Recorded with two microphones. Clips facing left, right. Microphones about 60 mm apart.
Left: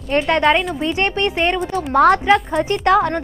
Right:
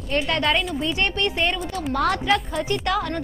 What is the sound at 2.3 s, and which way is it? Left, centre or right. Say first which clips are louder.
Speech: left 6 dB; left.